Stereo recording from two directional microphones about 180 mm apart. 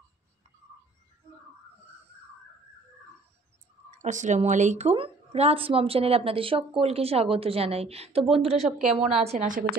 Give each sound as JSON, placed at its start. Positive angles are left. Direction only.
{"t": 4.0, "sound": "a woman's voice", "side_deg": -40}